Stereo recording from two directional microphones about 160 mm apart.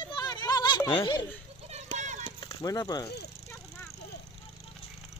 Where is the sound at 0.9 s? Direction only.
30° left (ahead or behind).